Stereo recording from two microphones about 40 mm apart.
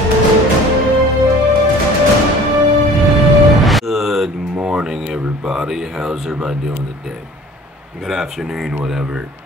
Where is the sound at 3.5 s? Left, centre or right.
Centre.